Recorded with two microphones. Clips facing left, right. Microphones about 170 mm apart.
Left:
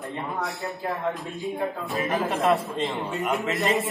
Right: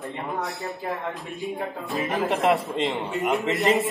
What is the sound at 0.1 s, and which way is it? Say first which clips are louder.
Speech: even; 20° right (ahead or behind).